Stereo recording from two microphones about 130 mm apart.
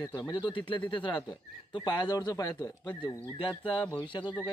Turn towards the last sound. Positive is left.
turn(degrees=35)  # may be behind; listen again after turning